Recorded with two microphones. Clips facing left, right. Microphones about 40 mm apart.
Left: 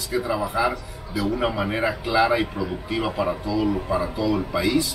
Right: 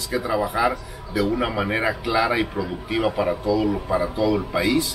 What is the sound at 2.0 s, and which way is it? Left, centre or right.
Speech, right.